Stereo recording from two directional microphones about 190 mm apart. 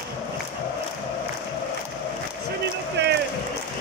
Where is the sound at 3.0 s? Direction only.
65° right (ahead or behind).